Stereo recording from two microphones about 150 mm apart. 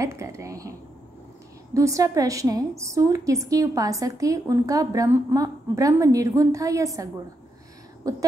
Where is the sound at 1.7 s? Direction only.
20° right (ahead or behind).